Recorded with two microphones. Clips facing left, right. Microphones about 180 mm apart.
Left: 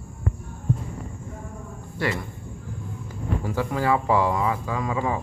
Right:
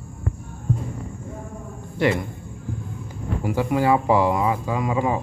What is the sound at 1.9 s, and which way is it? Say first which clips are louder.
Speech: right 6 dB; 20° right (ahead or behind).